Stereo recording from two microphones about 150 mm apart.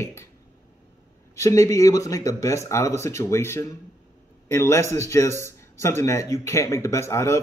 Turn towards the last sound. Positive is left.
turn(degrees=20)  # may be behind; listen again after turning